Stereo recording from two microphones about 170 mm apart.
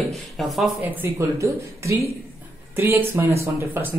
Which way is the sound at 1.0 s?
15° right (ahead or behind).